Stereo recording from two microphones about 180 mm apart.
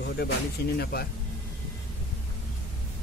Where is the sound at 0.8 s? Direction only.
60° left (ahead or behind).